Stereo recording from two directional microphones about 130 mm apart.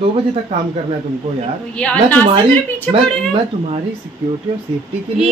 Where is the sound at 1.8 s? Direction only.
10° left (ahead or behind).